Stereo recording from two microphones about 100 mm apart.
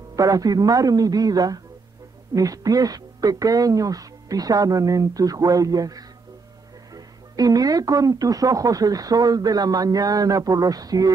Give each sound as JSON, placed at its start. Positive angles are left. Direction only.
{"t": 0.1, "sound": "speech", "side_deg": -35}